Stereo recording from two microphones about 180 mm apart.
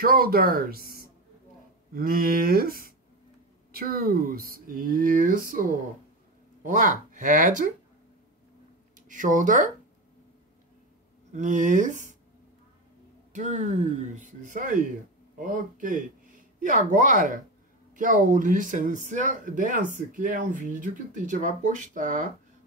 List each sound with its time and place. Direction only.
0.0 s speech: 55° right (ahead or behind)
9.1 s speech: 45° right (ahead or behind)
11.3 s speech: 45° right (ahead or behind)
13.3 s speech: 40° right (ahead or behind)